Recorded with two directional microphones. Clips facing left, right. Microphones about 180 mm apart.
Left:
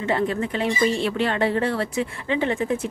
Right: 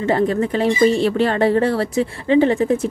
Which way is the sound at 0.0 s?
40° right (ahead or behind).